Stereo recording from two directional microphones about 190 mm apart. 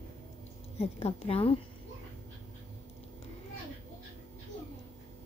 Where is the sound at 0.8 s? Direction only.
30° left (ahead or behind).